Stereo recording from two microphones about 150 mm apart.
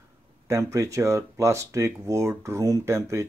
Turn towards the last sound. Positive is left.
turn(degrees=-20)  # may be behind; listen again after turning